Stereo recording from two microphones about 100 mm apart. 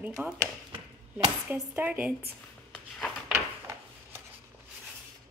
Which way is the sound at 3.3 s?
25° right (ahead or behind).